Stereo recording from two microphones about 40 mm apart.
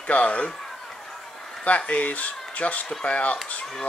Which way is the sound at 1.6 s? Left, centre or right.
Left.